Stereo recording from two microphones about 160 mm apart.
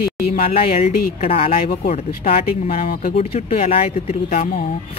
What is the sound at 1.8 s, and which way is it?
Speech, 50° left (ahead or behind).